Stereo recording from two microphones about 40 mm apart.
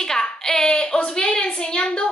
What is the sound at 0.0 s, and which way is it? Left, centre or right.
A woman's voice, centre.